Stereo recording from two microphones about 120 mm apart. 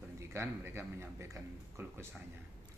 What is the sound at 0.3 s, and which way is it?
Speech, 20° right (ahead or behind).